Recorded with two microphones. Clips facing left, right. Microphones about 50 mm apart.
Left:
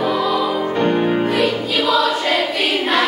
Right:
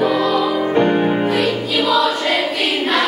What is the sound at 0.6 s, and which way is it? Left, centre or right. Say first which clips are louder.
Music: right 2 dB; centre.